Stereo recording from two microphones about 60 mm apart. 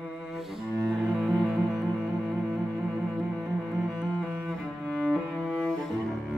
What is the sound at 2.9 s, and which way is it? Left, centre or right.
Music, centre.